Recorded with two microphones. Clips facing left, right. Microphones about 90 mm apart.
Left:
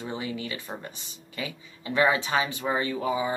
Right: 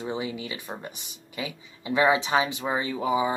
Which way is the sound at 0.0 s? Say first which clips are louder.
Right 2 dB; 20° right (ahead or behind).